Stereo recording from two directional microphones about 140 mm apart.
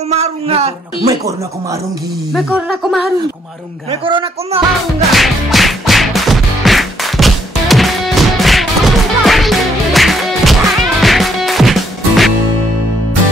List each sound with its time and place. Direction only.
0.1 s a man's voice: 50° right (ahead or behind)
1.0 s speech: 25° right (ahead or behind)
2.3 s speech: centre (ahead or behind)
3.9 s a man's voice: 35° right (ahead or behind)
5.1 s music: centre (ahead or behind)